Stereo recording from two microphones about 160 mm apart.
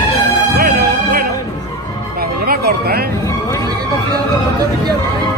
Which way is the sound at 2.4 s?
70° right (ahead or behind).